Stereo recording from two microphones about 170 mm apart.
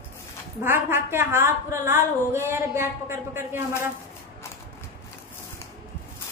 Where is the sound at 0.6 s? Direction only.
15° right (ahead or behind).